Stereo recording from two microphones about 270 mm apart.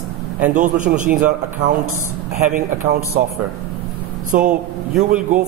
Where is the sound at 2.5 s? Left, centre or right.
Right.